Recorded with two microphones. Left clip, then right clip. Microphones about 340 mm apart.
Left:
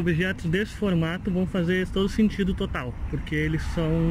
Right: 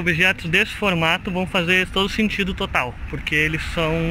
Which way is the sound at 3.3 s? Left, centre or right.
Right.